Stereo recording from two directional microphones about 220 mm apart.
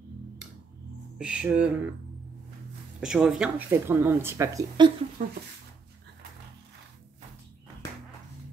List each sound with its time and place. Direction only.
1.1 s speech: 5° right (ahead or behind)
3.0 s speech: 5° right (ahead or behind)
5.2 s speech: 35° right (ahead or behind)